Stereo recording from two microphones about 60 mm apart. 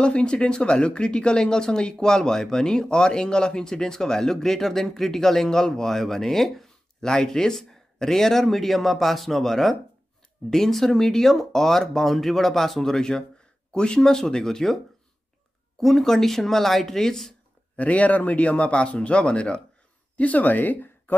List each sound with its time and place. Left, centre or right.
0.0 s speech: centre
15.8 s speech: centre
17.7 s speech: left